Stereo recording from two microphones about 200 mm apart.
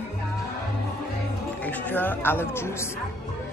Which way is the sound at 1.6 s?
10° left (ahead or behind).